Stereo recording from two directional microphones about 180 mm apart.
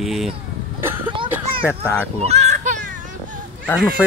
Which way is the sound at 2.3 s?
40° right (ahead or behind).